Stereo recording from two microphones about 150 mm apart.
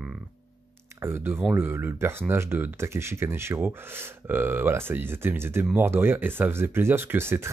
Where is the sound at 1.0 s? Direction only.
15° right (ahead or behind).